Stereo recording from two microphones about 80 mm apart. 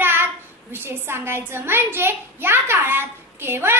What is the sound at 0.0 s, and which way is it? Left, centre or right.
A child's voice, right.